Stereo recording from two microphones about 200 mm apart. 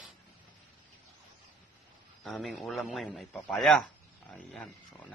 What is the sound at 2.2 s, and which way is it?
A man's voice, centre (ahead or behind).